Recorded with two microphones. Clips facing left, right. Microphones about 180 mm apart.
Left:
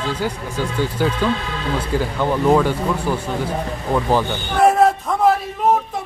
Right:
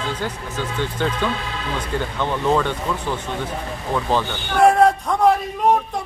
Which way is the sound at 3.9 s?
5° left (ahead or behind).